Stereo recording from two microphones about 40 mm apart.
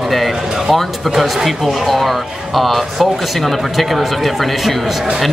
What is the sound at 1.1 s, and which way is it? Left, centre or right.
Speech, centre.